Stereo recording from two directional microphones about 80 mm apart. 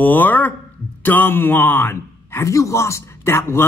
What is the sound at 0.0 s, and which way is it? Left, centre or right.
A man's voice, left.